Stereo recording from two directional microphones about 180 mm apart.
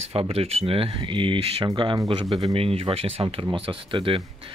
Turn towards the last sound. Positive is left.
turn(degrees=-30)  # may be behind; listen again after turning